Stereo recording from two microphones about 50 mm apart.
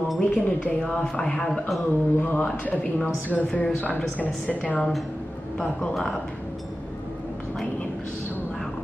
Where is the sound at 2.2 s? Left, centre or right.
Left.